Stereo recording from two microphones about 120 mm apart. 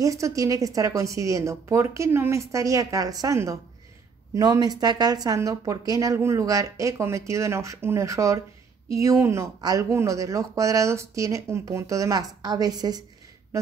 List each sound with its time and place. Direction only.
0.0 s a woman's voice: 30° right (ahead or behind)